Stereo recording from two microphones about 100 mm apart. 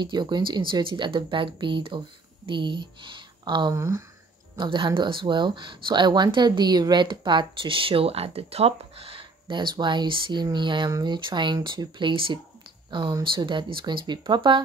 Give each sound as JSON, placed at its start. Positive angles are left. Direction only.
{"t": 0.0, "sound": "speech", "side_deg": -50}
{"t": 3.7, "sound": "speech", "side_deg": -30}
{"t": 4.6, "sound": "speech", "side_deg": -50}